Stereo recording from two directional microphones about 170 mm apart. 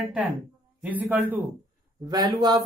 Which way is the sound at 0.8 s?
10° right (ahead or behind).